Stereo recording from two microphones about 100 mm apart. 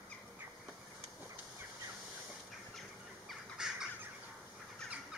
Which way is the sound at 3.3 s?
5° right (ahead or behind).